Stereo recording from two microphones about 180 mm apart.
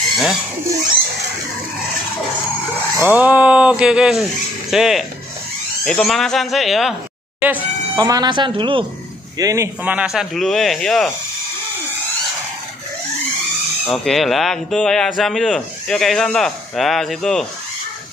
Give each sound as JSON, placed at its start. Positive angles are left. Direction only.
{"t": 0.1, "sound": "a sound", "side_deg": 0}
{"t": 3.1, "sound": "speech", "side_deg": -10}
{"t": 7.4, "sound": "a sound", "side_deg": -10}
{"t": 8.0, "sound": "speech", "side_deg": -20}
{"t": 9.4, "sound": "speech", "side_deg": -15}
{"t": 13.8, "sound": "speech", "side_deg": 0}